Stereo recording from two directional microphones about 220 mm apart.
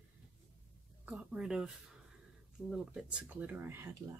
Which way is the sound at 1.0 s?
5° right (ahead or behind).